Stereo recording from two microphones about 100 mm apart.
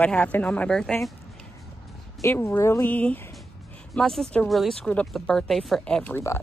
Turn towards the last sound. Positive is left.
turn(degrees=15)  # may be behind; listen again after turning